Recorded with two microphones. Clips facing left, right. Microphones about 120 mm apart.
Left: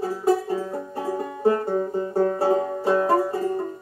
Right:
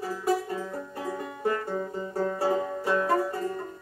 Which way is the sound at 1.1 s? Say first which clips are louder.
Left 8 dB; 30° left (ahead or behind).